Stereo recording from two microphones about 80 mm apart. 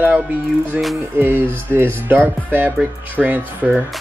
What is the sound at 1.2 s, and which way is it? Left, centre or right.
Speech, right.